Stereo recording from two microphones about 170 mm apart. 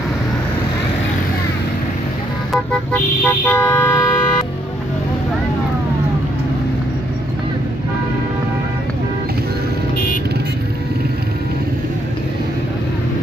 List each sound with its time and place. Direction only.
2.5 s vehicle: 10° left (ahead or behind)